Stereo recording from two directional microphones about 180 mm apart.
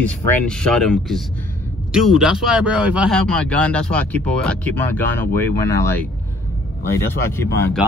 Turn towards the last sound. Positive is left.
turn(degrees=15)  # may be behind; listen again after turning